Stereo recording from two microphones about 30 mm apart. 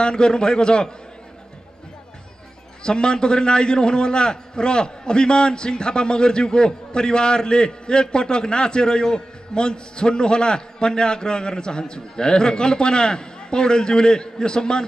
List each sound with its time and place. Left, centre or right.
0.0 s a man's voice: left
2.8 s a man's voice: left